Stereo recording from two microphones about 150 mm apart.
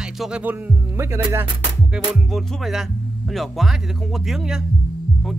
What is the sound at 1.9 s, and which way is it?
Speech, centre (ahead or behind).